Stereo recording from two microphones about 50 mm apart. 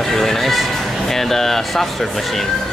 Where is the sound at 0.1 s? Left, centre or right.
Centre.